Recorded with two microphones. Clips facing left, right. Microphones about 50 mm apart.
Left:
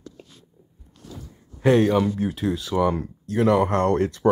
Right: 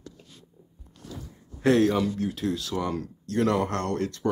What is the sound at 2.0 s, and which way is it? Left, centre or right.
Speech, left.